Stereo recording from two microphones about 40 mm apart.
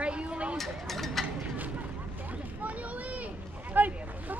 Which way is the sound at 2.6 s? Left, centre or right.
Right.